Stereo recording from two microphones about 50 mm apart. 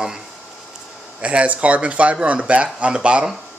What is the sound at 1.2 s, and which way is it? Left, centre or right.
Speech, right.